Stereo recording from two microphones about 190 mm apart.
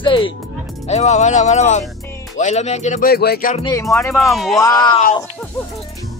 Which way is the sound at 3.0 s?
55° left (ahead or behind).